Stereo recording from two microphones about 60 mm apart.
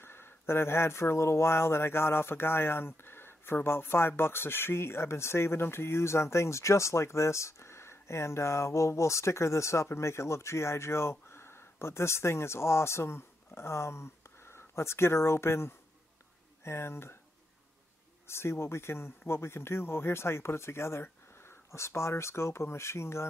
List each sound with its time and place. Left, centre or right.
0.0 s speech: left
18.2 s speech: left